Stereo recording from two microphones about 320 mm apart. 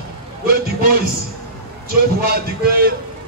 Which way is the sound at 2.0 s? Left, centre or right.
Right.